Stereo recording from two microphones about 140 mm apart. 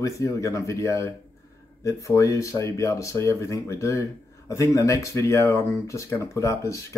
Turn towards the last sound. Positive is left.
turn(degrees=20)  # may be behind; listen again after turning